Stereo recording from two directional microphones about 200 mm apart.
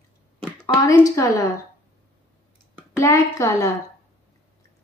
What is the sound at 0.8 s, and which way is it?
Speech, 15° left (ahead or behind).